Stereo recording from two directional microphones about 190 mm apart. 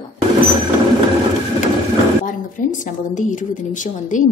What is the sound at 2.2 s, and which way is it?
A woman's voice, 45° left (ahead or behind).